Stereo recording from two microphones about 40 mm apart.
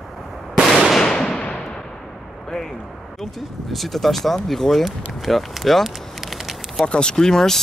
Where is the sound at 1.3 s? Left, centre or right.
Left.